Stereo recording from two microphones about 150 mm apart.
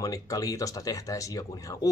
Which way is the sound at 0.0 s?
25° left (ahead or behind).